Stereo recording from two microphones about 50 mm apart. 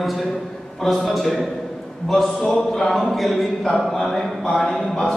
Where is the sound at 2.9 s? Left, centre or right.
Centre.